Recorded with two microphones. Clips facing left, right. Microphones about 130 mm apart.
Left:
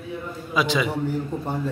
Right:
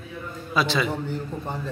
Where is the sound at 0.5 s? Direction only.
15° left (ahead or behind).